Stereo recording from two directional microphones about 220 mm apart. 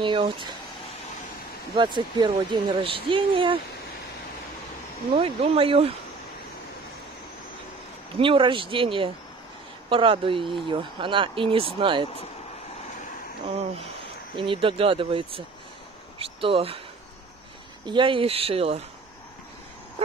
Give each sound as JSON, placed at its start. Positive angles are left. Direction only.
{"t": 0.0, "sound": "speech", "side_deg": -20}
{"t": 1.8, "sound": "speech", "side_deg": -20}
{"t": 5.1, "sound": "speech", "side_deg": -25}
{"t": 8.2, "sound": "speech", "side_deg": -20}
{"t": 14.3, "sound": "speech", "side_deg": -25}
{"t": 17.8, "sound": "speech", "side_deg": -20}